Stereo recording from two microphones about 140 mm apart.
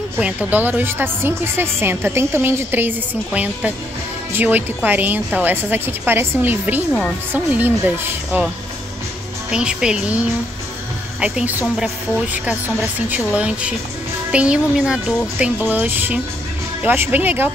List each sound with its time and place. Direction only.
0.2 s speech: 10° right (ahead or behind)
4.3 s speech: 15° right (ahead or behind)
9.5 s speech: 5° right (ahead or behind)
12.4 s speech: 10° right (ahead or behind)